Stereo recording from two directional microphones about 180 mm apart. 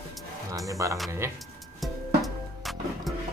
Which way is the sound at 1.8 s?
Centre (ahead or behind).